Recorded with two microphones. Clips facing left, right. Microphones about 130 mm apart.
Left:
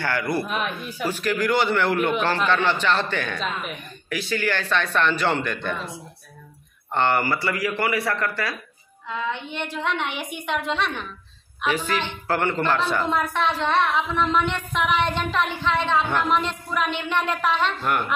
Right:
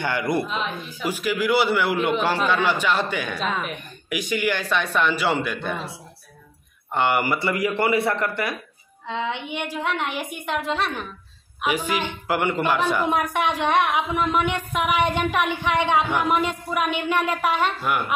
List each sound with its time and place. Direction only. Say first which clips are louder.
0.0 s a man's voice: right 1 dB; 20° right (ahead or behind)
1.0 s a woman's voice: even; 10° right (ahead or behind)
6.9 s a man's voice: even; 10° right (ahead or behind)